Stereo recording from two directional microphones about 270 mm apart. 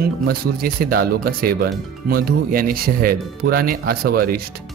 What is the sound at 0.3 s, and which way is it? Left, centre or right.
Speech, right.